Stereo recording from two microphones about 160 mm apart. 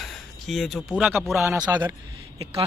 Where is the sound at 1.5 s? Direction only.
10° right (ahead or behind).